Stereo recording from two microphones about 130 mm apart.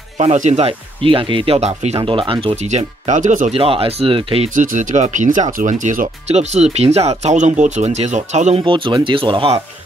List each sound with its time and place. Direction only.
0.2 s speech: 60° right (ahead or behind); by 2.5 s 40° right (ahead or behind)
2.5 s speech: 60° right (ahead or behind)
3.5 s speech: 45° right (ahead or behind)
4.6 s speech: 70° right (ahead or behind)
8.6 s speech: 40° right (ahead or behind)